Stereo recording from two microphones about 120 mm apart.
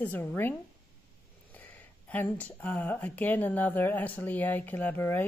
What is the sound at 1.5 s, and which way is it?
Speech, 15° left (ahead or behind).